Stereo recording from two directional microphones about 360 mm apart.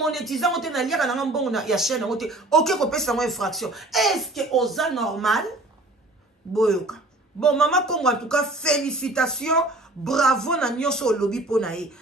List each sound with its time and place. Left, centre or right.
0.0 s speech: centre
6.5 s speech: centre